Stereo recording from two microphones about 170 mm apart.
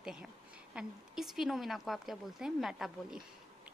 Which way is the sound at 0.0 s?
5° right (ahead or behind).